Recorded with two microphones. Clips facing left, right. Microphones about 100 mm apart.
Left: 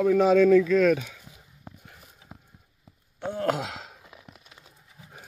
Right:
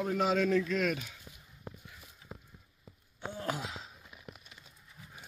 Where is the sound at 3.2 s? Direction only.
65° left (ahead or behind); by 4.2 s 80° left.